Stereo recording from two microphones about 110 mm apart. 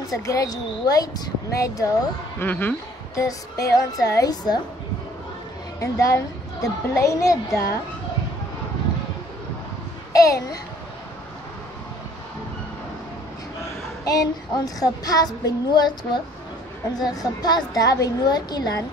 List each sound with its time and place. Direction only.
0.2 s speech: 30° left (ahead or behind)
2.4 s a man's voice: 15° left (ahead or behind)
3.2 s speech: 30° left (ahead or behind)
5.8 s a woman's voice: 30° left (ahead or behind)
10.1 s a child's voice: 30° left (ahead or behind)
14.0 s speech: 35° left (ahead or behind)